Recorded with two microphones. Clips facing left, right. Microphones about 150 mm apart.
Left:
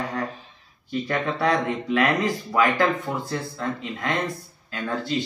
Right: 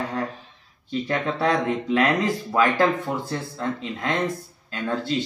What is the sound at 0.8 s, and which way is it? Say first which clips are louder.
Speech: even; 20° right (ahead or behind).